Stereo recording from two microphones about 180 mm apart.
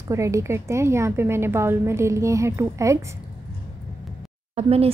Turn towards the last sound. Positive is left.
turn(degrees=-35)  # may be behind; listen again after turning